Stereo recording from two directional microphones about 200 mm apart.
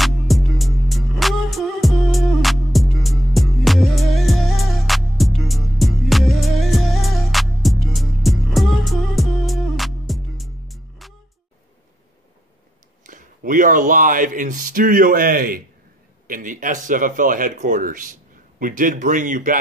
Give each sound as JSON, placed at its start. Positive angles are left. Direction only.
{"t": 0.0, "sound": "music", "side_deg": 0}
{"t": 13.0, "sound": "speech", "side_deg": -40}